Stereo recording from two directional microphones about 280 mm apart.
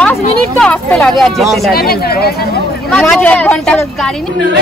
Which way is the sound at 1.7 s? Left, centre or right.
Left.